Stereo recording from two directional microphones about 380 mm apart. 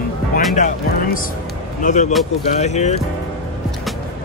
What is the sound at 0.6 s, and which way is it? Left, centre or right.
Speech, centre.